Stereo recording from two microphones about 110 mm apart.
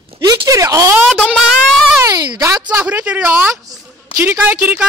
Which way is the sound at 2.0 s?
40° right (ahead or behind).